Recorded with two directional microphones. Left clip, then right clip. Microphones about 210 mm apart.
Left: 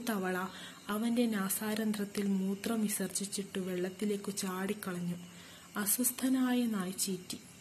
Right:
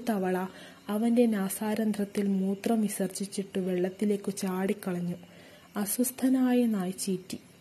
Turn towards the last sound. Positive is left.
turn(degrees=-30)  # may be behind; listen again after turning